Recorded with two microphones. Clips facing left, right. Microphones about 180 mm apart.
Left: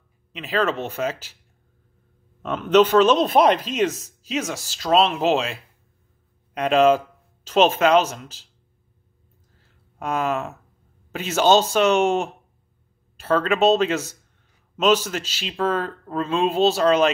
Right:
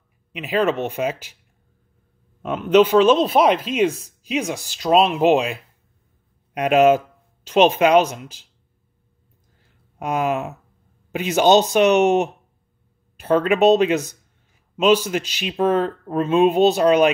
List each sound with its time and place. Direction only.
0.3 s speech: 15° right (ahead or behind)
2.4 s speech: 10° right (ahead or behind)
7.6 s speech: 15° right (ahead or behind)
9.9 s speech: 15° right (ahead or behind)